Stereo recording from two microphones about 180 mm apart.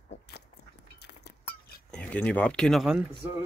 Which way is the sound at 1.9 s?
5° left (ahead or behind).